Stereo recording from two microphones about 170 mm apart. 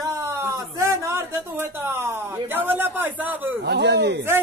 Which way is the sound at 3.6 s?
85° right.